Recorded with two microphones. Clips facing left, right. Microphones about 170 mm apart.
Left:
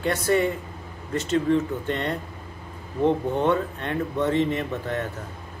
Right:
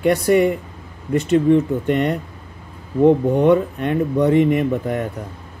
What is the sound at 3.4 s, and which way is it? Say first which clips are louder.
Speech: right 9 dB; 15° right (ahead or behind).